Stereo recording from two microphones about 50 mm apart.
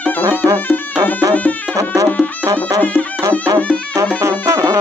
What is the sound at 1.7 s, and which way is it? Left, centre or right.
Music, right.